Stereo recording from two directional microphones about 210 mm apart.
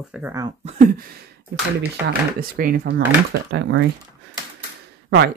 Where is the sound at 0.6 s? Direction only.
40° right (ahead or behind).